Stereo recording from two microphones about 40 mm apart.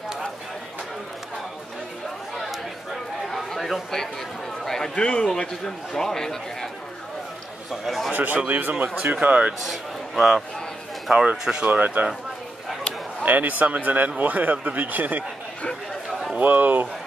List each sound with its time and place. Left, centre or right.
2.4 s chatter: centre
4.6 s a man's voice: centre
7.7 s speech: centre
8.1 s speech: right
9.6 s a man's voice: centre
11.6 s speech: right
13.2 s speech: right
16.3 s speech: right